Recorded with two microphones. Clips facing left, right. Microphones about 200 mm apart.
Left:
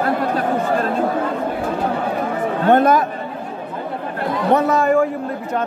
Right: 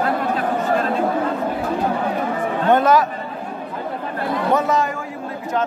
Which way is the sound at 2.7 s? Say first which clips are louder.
Left 1 dB; 55° left (ahead or behind).